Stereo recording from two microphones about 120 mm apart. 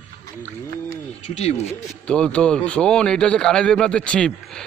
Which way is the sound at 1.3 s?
65° left (ahead or behind).